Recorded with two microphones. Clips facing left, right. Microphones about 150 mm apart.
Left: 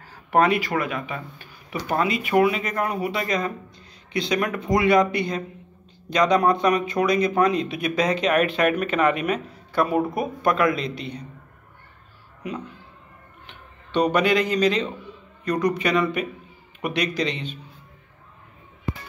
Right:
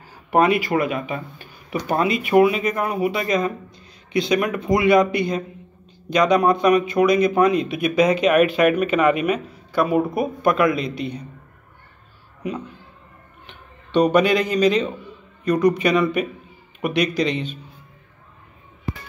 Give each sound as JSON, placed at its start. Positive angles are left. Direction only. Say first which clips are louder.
{"t": 0.3, "sound": "speech", "louder": "right 2 dB", "side_deg": -15}
{"t": 2.3, "sound": "speech", "louder": "right 4 dB", "side_deg": -10}
{"t": 13.9, "sound": "speech", "louder": "right 3 dB", "side_deg": -15}